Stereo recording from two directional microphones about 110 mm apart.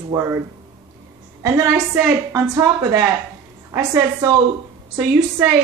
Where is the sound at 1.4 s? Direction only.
25° right (ahead or behind).